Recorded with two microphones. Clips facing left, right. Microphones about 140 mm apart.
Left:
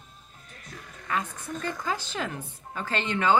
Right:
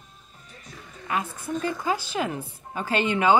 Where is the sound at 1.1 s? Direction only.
10° right (ahead or behind).